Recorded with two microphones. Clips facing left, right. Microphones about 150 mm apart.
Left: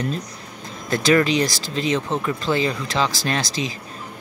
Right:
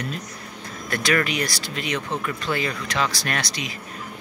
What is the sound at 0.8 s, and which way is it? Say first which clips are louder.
Speech: left 6 dB; 25° left (ahead or behind).